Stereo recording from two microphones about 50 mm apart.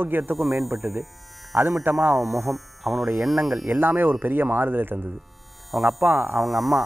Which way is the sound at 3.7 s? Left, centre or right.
Right.